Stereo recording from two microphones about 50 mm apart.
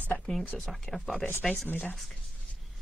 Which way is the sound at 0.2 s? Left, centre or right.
Centre.